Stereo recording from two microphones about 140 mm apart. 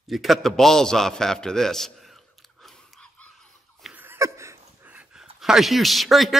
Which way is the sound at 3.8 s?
15° right (ahead or behind).